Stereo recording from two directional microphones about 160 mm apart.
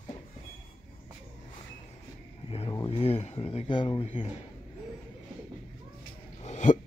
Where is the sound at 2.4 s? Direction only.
35° left (ahead or behind).